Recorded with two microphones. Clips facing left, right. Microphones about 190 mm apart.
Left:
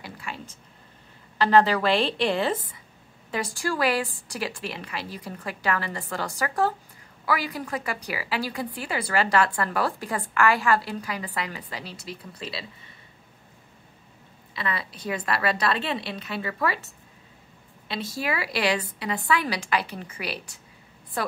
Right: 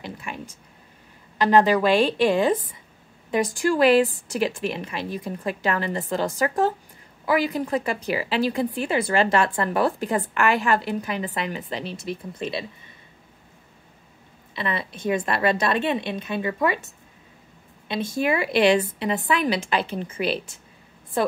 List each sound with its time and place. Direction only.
0.0 s a sound: 20° right (ahead or behind)
1.4 s a woman's voice: 15° right (ahead or behind)
14.5 s a woman's voice: 20° right (ahead or behind)
18.1 s a woman's voice: 20° right (ahead or behind)